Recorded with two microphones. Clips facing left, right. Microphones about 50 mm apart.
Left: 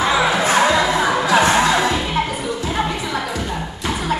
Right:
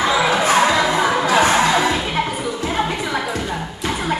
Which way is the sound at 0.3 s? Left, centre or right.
Right.